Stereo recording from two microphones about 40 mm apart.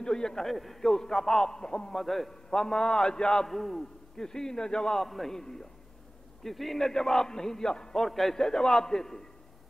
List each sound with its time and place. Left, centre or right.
0.0 s a man's voice: centre
0.5 s a man's voice: centre
2.0 s a man's voice: centre
2.5 s a man's voice: centre
3.4 s a man's voice: centre
4.2 s a man's voice: centre
4.9 s a man's voice: centre
6.4 s a man's voice: centre